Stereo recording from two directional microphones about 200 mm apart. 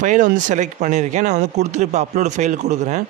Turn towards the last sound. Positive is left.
turn(degrees=-35)  # may be behind; listen again after turning